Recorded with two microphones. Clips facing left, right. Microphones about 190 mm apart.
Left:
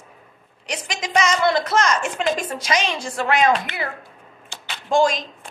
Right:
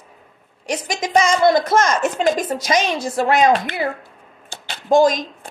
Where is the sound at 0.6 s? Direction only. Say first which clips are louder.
Right 6 dB; 45° right (ahead or behind).